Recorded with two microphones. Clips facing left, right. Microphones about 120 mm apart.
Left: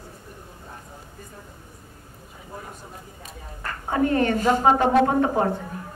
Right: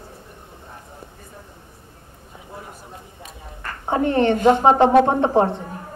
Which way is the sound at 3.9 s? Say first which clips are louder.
Right 3 dB; 25° right (ahead or behind).